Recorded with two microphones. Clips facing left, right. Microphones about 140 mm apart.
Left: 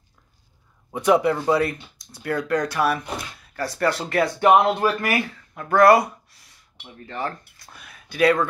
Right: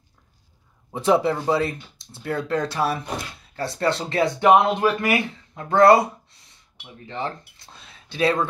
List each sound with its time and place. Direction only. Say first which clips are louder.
0.9 s speech: left 1 dB; 25° right (ahead or behind)